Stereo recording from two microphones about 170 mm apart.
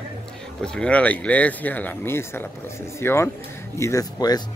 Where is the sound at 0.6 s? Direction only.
5° left (ahead or behind).